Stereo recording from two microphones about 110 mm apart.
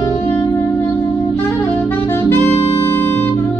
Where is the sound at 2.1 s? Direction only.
20° left (ahead or behind).